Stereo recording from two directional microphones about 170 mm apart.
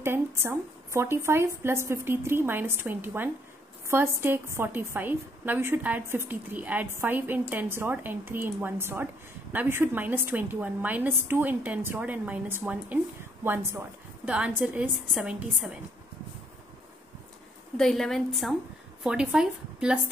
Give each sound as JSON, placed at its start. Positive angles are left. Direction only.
{"t": 0.0, "sound": "a woman's voice", "side_deg": -15}
{"t": 17.7, "sound": "speech", "side_deg": 0}